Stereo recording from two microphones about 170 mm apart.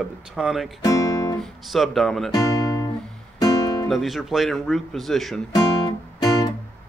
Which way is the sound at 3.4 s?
20° left (ahead or behind).